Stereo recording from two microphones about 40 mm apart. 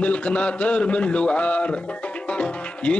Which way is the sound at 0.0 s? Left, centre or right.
Left.